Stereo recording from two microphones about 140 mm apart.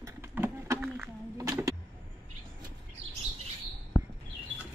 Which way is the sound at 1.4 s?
25° right (ahead or behind).